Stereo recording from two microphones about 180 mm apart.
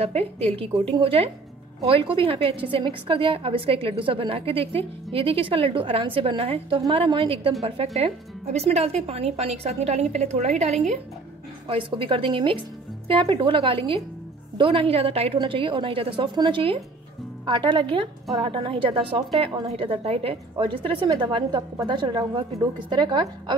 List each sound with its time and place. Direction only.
0.0 s speech: 35° right (ahead or behind)